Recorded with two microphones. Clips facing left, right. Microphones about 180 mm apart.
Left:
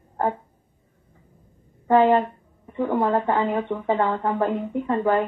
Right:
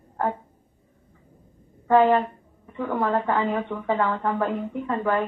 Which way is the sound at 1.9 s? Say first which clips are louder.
Left 1 dB; 20° left (ahead or behind).